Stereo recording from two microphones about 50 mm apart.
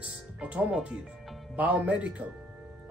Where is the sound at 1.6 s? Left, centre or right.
Right.